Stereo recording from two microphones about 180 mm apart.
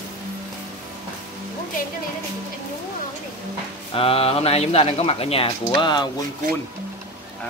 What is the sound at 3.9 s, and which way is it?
Speech, 30° left (ahead or behind).